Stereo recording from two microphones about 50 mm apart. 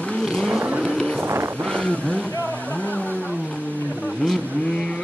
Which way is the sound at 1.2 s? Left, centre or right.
Right.